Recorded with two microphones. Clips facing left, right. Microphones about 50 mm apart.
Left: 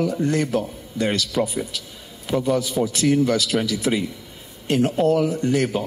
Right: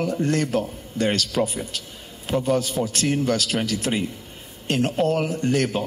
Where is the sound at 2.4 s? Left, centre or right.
Right.